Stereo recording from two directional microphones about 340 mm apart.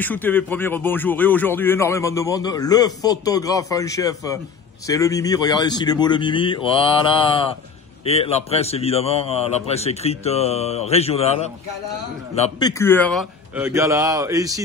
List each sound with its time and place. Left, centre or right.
0.0 s a man's voice: centre